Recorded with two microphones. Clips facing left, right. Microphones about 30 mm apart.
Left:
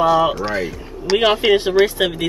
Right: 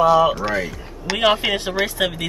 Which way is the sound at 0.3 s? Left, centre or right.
Centre.